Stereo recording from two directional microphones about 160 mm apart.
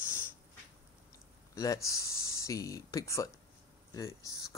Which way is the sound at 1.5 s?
20° left (ahead or behind).